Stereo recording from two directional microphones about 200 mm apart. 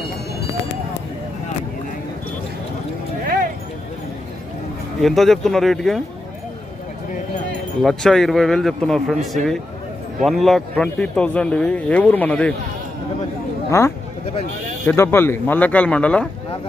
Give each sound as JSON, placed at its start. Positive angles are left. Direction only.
{"t": 5.0, "sound": "speech", "side_deg": 0}
{"t": 7.8, "sound": "speech", "side_deg": 0}
{"t": 13.7, "sound": "speech", "side_deg": 15}